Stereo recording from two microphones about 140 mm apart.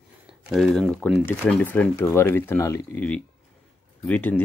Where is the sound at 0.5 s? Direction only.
Centre (ahead or behind); by 2.8 s 20° left (ahead or behind).